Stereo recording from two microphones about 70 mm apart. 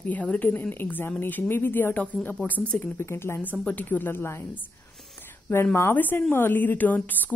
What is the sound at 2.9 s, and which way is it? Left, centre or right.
Speech, left.